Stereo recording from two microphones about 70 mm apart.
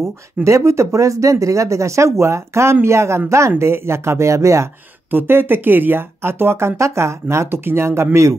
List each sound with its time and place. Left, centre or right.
0.4 s speech: right
5.1 s speech: right